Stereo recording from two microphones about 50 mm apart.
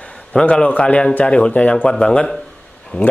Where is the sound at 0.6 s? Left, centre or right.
Left.